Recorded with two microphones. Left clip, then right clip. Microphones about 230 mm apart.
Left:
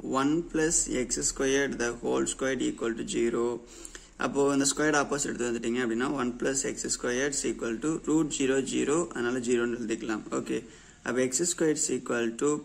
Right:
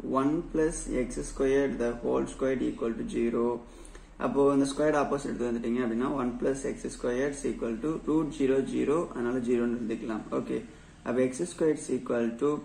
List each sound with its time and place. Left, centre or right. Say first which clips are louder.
0.1 s speech: left 1 dB; left